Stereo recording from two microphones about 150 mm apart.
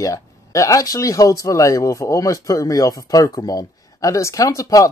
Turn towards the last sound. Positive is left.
turn(degrees=20)  # may be behind; listen again after turning